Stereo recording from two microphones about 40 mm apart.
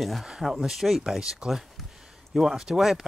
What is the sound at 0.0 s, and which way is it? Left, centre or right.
Speech, centre.